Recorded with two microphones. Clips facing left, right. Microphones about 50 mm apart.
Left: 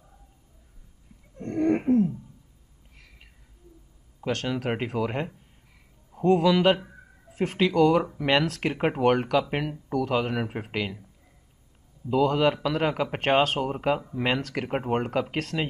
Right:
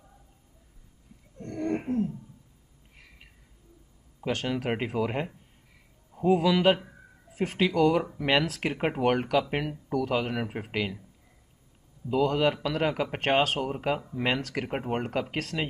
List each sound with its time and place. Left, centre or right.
1.4 s a sound: left
4.2 s speech: centre
12.1 s speech: centre